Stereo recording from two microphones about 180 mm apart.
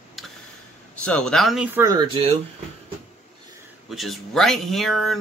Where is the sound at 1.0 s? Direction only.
5° left (ahead or behind).